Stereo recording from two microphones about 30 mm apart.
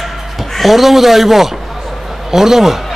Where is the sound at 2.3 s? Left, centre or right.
Centre.